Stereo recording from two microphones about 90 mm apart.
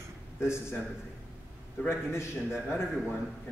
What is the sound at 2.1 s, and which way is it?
Speech, 30° left (ahead or behind).